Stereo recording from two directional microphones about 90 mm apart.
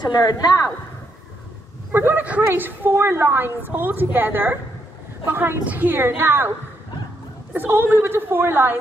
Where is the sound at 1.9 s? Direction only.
25° right (ahead or behind).